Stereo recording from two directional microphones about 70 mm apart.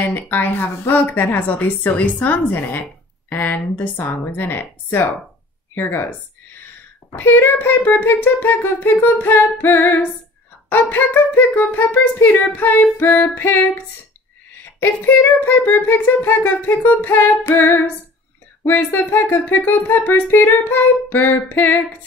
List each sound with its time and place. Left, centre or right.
0.0 s music: left
5.8 s speech: left
7.2 s music: left
13.3 s speech: left
14.8 s music: left
18.8 s speech: left
20.2 s music: left